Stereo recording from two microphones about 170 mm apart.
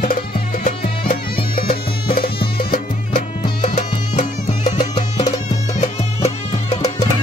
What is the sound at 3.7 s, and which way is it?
Music, 40° left (ahead or behind).